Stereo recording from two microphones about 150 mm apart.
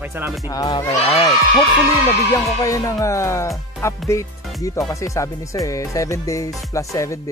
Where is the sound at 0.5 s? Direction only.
25° left (ahead or behind).